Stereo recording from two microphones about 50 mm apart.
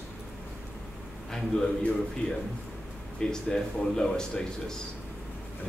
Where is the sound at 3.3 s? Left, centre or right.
Centre.